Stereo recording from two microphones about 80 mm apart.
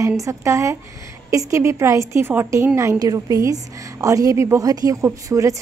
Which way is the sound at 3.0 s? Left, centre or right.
Right.